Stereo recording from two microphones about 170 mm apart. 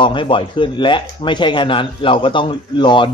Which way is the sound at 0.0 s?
30° left (ahead or behind).